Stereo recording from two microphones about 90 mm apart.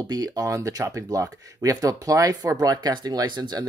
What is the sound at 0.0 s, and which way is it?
Speech, 45° right (ahead or behind).